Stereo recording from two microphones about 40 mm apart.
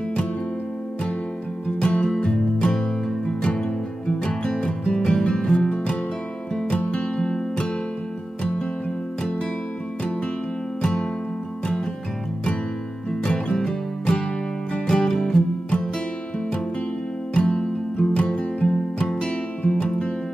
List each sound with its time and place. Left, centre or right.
1.9 s music: left
7.2 s music: centre
10.8 s music: centre
13.2 s music: left
17.3 s music: left